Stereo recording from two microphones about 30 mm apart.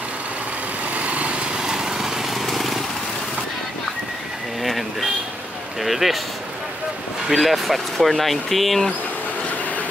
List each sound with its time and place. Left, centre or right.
0.9 s lawn mower: right
1.6 s lawn mower: right
2.2 s lawn mower: centre
4.6 s a sound: centre
7.2 s speech: centre